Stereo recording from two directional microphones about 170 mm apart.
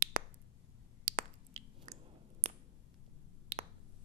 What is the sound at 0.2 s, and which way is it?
Finger snapping, 55° right (ahead or behind).